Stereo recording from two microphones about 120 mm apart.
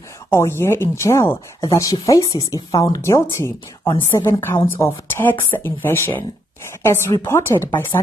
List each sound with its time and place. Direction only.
0.3 s a woman's voice: 20° left (ahead or behind)